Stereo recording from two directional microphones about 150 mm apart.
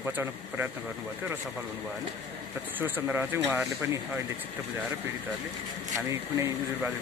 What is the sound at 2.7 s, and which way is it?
Speech, 15° right (ahead or behind).